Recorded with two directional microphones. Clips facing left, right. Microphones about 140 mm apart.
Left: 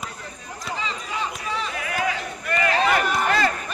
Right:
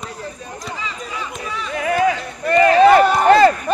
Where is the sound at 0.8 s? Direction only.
30° left (ahead or behind).